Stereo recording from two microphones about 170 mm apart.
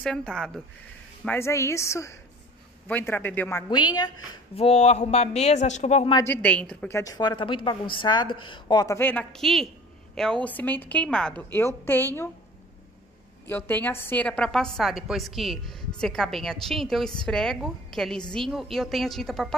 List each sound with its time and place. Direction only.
0.0 s a woman's voice: 5° left (ahead or behind)
3.7 s a woman's voice: 25° left (ahead or behind)
4.6 s speech: 40° left (ahead or behind)
6.2 s a woman's voice: 10° left (ahead or behind)
7.0 s a woman's voice: 20° left (ahead or behind)
13.5 s a woman's voice: 10° left (ahead or behind)